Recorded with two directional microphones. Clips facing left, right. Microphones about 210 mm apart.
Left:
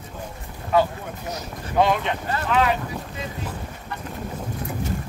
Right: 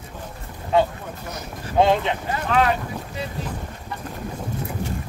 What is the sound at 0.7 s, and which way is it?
Speech, 25° right (ahead or behind).